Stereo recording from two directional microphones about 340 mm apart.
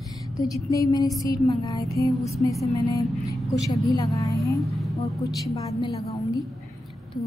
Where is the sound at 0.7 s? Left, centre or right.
Centre.